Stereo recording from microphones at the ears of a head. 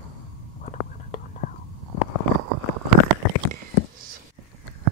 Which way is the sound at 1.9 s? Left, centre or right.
Left.